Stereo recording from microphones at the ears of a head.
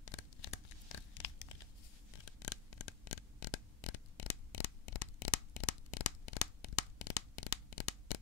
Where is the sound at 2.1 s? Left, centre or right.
Left.